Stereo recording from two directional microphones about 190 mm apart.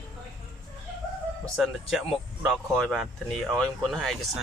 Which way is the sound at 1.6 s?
Centre (ahead or behind).